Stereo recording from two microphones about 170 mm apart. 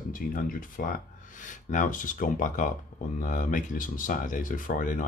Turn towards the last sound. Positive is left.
turn(degrees=50)  # may be behind; listen again after turning